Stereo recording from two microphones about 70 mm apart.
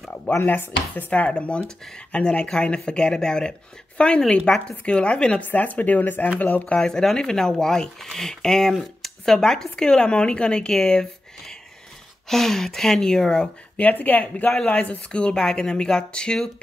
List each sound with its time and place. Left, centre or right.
0.3 s speech: left
6.8 s speech: centre
13.7 s speech: left